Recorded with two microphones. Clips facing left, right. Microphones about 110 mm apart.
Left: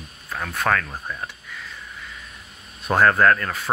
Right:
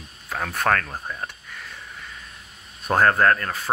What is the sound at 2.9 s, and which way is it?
Speech, 30° right (ahead or behind).